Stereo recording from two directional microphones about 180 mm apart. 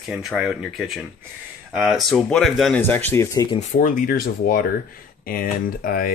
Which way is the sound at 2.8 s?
10° left (ahead or behind).